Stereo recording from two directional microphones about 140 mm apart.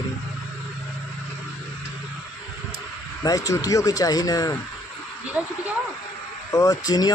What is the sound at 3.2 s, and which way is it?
Speech, 25° left (ahead or behind).